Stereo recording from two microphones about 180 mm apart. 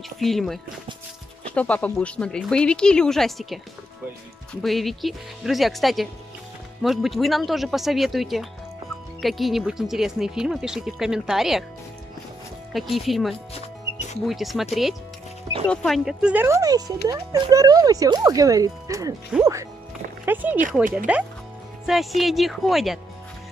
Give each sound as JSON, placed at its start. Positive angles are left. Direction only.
{"t": 0.2, "sound": "speech", "side_deg": 0}
{"t": 12.7, "sound": "speech", "side_deg": 0}